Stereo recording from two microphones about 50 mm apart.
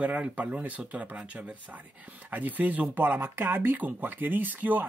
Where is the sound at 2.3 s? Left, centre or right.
Right.